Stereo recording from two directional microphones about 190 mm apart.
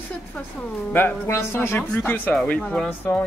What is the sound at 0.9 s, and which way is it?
Speech, 10° left (ahead or behind).